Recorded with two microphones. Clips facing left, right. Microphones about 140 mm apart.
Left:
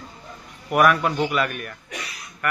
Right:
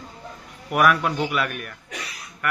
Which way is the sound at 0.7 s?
Centre (ahead or behind).